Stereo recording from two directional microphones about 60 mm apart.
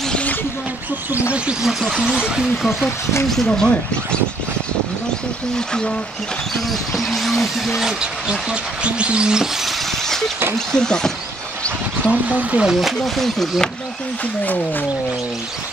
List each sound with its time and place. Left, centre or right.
0.1 s a sound: left
1.6 s speech: centre
3.4 s speech: centre
6.5 s speech: centre
7.8 s speech: centre
12.1 s speech: right
12.6 s speech: centre
14.4 s speech: left